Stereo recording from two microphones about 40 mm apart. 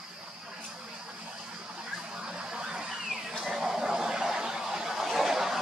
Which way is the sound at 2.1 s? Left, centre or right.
Right.